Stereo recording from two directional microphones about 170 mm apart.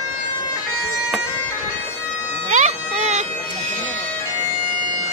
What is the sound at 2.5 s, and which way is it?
Bagpipes, 45° right (ahead or behind).